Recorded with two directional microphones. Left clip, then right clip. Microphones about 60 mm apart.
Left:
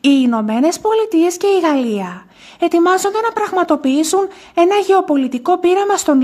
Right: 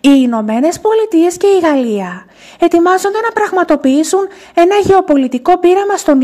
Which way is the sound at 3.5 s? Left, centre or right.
Right.